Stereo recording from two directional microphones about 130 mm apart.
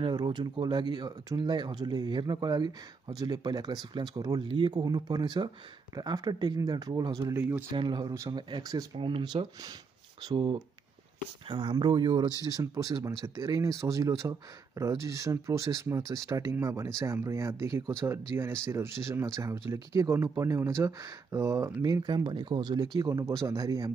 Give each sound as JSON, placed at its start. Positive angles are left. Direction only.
{"t": 0.0, "sound": "speech", "side_deg": -35}
{"t": 7.7, "sound": "speech", "side_deg": -35}